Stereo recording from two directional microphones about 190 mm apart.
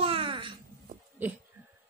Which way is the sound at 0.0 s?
30° right (ahead or behind).